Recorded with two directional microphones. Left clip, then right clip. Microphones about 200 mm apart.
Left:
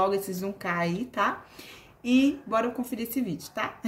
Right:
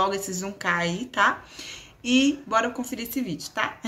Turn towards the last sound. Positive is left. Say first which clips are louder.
# right 4 dB
turn(degrees=5)  # may be behind; listen again after turning